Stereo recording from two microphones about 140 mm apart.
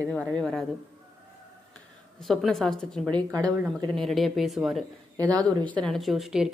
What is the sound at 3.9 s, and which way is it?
Speech, centre (ahead or behind).